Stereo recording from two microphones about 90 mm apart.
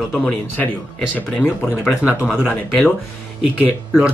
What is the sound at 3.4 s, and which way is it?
Speech, 10° right (ahead or behind).